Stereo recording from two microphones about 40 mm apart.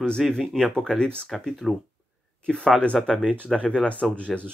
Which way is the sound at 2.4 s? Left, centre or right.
Left.